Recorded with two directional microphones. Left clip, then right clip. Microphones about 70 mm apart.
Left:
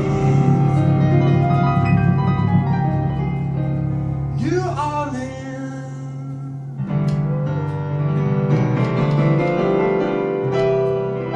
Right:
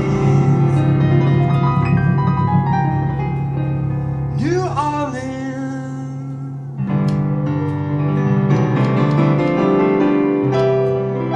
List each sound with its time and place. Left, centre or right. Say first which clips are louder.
0.0 s music: right 1 dB; right
4.4 s music: right 3 dB; right
8.0 s music: right 2 dB; right